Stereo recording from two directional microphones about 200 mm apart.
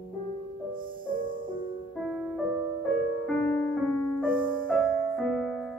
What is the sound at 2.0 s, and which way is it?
Music, 5° right (ahead or behind).